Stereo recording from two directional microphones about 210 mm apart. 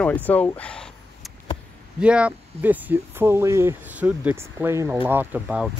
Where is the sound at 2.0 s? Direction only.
5° right (ahead or behind).